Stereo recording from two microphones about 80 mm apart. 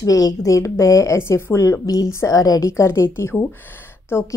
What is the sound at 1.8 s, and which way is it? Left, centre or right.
A woman's voice, left.